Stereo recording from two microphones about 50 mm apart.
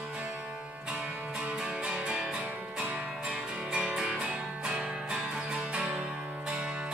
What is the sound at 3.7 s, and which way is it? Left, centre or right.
Music, centre.